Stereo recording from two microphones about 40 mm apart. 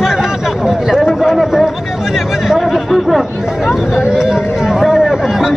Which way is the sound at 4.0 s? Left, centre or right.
Centre.